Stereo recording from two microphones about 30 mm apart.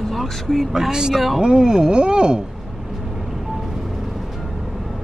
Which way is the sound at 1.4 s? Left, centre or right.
Right.